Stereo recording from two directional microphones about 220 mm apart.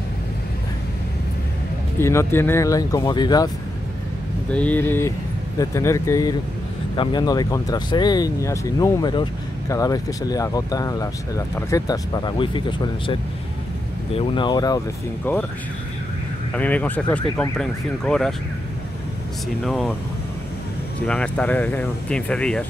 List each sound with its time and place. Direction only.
2.0 s speech: 10° left (ahead or behind)
4.5 s speech: 5° left (ahead or behind)
16.5 s speech: 5° left (ahead or behind)
19.6 s speech: centre (ahead or behind)
21.1 s speech: 5° left (ahead or behind)